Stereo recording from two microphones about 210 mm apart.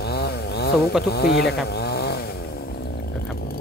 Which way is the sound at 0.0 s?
50° left (ahead or behind).